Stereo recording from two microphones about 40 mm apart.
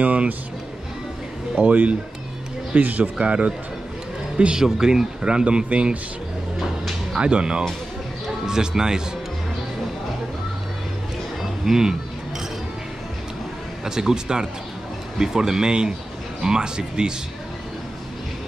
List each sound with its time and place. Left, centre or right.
0.0 s music: right
1.6 s speech: right
4.6 s speech: centre
7.2 s speech: right
11.6 s speech: centre
13.8 s speech: centre